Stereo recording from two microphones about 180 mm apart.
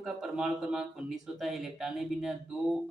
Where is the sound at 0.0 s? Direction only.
5° right (ahead or behind).